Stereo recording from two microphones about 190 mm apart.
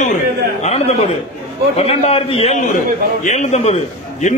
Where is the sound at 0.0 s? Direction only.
35° left (ahead or behind).